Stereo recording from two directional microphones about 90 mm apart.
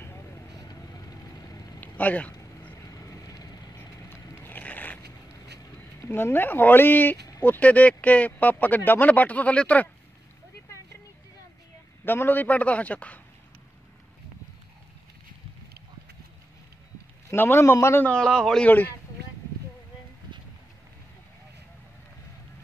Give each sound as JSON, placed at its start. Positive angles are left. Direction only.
{"t": 1.8, "sound": "speech", "side_deg": 20}
{"t": 2.9, "sound": "vehicle", "side_deg": 40}
{"t": 4.4, "sound": "a sound", "side_deg": 20}
{"t": 5.9, "sound": "speech", "side_deg": 25}
{"t": 12.0, "sound": "speech", "side_deg": 25}
{"t": 17.3, "sound": "speech", "side_deg": 30}
{"t": 18.0, "sound": "a man's voice", "side_deg": 5}